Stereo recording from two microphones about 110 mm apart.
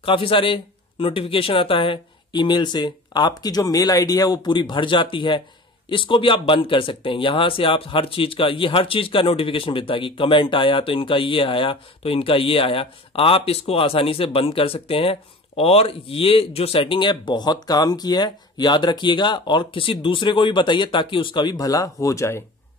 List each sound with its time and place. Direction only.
0.0 s speech: 55° left (ahead or behind); by 22.4 s 25° left (ahead or behind)